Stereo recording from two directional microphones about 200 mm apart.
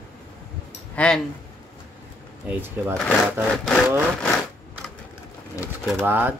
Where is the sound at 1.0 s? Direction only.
5° left (ahead or behind).